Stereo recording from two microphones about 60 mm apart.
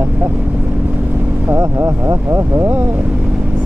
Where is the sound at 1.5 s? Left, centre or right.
Right.